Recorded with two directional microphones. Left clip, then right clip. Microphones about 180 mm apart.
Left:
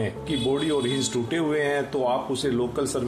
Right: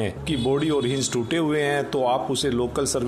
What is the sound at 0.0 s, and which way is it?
Speech, 40° right (ahead or behind).